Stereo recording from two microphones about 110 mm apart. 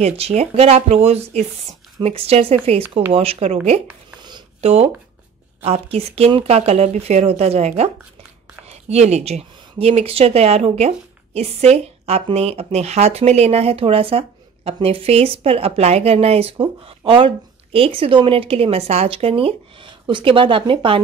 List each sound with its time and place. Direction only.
0.0 s speech: 75° right (ahead or behind)
8.6 s speech: 85° right
12.3 s speech: 65° right (ahead or behind)